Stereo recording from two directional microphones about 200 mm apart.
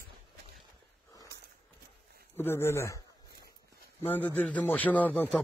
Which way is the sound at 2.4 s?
10° left (ahead or behind).